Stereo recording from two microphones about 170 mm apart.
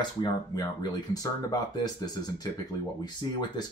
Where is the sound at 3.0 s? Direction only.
25° left (ahead or behind).